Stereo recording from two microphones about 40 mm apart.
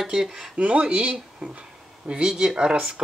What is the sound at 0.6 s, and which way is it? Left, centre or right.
Speech, right.